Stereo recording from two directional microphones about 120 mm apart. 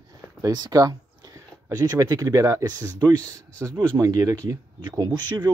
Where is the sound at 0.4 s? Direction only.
35° right (ahead or behind).